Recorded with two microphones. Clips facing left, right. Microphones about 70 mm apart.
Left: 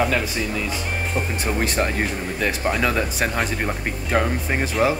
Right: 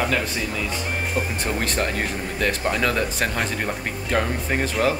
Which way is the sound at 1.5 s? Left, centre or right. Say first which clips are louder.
Left 5 dB; centre.